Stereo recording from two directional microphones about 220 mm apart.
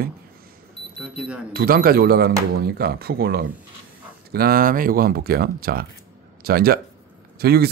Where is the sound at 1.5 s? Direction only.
40° right (ahead or behind).